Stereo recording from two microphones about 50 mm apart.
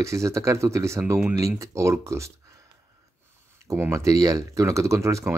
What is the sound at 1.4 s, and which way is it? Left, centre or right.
Speech, right.